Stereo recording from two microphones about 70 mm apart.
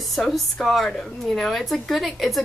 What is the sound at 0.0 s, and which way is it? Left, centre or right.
A woman's voice, centre.